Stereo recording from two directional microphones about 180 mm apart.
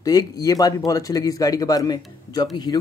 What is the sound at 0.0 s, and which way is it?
Speech, 20° left (ahead or behind).